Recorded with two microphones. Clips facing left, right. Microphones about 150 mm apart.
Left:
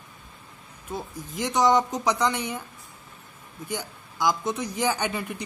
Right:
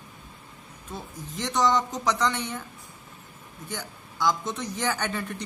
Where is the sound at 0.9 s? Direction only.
10° left (ahead or behind).